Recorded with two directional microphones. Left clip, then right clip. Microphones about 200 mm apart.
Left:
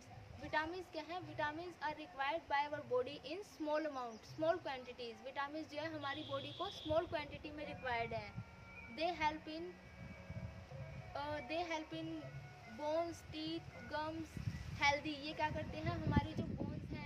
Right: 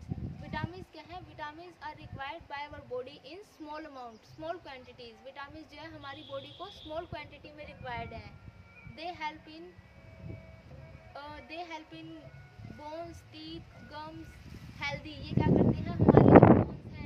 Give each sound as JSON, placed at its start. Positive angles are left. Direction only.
{"t": 0.5, "sound": "a woman's voice", "side_deg": 15}
{"t": 11.1, "sound": "a woman's voice", "side_deg": 15}